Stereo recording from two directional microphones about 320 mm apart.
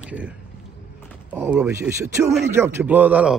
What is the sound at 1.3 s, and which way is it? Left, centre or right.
A man's voice, centre.